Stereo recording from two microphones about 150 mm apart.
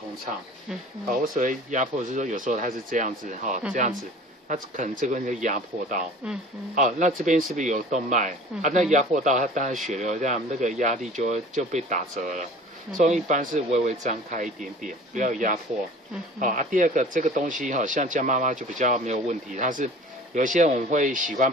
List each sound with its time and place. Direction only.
1.0 s speech: 70° right (ahead or behind)